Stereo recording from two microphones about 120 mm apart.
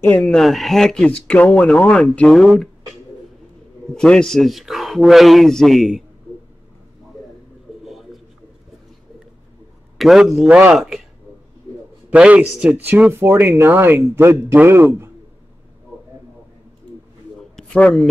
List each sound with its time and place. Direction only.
0.2 s speech: 5° left (ahead or behind)
3.9 s speech: 5° left (ahead or behind)
7.8 s a sound: centre (ahead or behind)
9.9 s speech: centre (ahead or behind)
12.1 s a man's voice: 10° right (ahead or behind)
17.4 s a sound: 5° left (ahead or behind)